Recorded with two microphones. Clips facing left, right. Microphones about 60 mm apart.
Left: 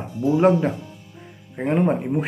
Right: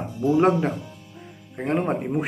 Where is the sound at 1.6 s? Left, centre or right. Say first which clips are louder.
Left 3 dB; centre.